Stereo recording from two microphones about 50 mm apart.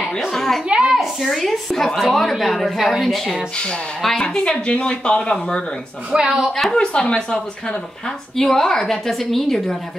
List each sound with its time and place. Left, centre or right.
0.3 s a woman's voice: centre
0.7 s speech: centre
0.9 s speech: centre
4.2 s speech: centre
6.1 s speech: centre
6.5 s a woman's voice: centre
8.4 s a woman's voice: centre